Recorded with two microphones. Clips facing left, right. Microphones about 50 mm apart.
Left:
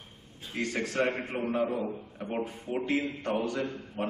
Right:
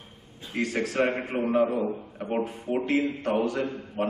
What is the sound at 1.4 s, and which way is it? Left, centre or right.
A man's voice, right.